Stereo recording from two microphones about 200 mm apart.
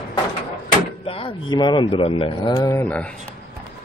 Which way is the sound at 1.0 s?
25° left (ahead or behind).